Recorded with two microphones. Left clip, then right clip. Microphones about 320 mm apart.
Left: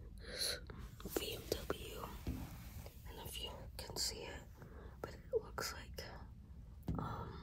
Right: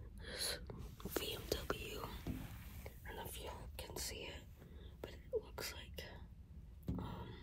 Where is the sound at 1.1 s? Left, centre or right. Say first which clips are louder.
Even; right.